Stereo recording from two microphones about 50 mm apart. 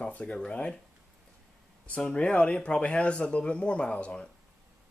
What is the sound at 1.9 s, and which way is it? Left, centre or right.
Speech, left.